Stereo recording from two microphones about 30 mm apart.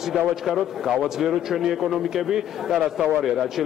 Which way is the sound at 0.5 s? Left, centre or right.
Centre.